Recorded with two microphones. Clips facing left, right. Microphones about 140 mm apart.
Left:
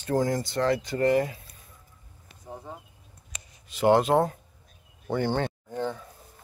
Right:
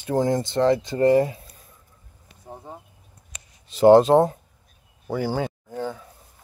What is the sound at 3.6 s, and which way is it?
Speech, 30° right (ahead or behind).